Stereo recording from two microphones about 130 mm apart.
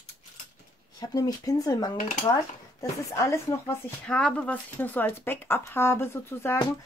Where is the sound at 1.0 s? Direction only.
30° left (ahead or behind).